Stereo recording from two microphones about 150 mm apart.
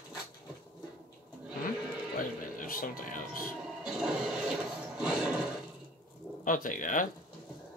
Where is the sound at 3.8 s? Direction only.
5° right (ahead or behind).